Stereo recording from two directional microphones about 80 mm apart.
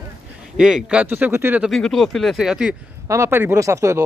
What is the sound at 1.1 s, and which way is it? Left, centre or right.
Speech, right.